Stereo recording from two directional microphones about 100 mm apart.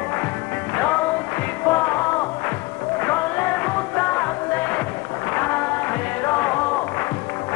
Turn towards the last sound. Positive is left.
turn(degrees=15)  # may be behind; listen again after turning